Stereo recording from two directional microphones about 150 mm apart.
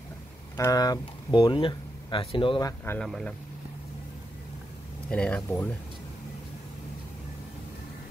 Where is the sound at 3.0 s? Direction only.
5° left (ahead or behind).